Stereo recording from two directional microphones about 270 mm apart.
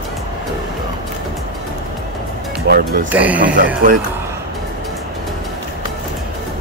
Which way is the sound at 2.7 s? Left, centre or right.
Right.